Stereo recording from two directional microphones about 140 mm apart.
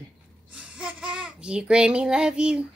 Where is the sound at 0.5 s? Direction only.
5° right (ahead or behind).